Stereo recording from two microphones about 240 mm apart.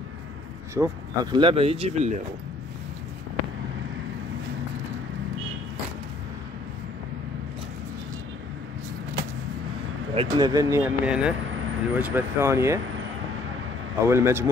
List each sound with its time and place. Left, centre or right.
0.7 s speech: centre
10.1 s speech: centre
14.0 s speech: centre